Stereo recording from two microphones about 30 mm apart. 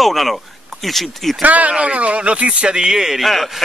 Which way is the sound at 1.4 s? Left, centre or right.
Right.